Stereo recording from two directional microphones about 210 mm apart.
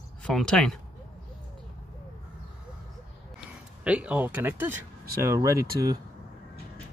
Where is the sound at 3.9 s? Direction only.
5° right (ahead or behind).